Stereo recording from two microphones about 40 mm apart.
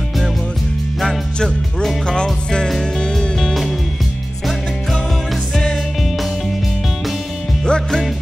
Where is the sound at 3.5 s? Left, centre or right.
Centre.